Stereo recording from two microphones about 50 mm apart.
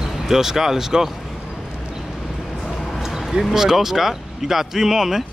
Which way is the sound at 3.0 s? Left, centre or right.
Centre.